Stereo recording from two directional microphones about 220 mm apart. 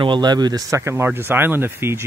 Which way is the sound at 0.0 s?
20° right (ahead or behind).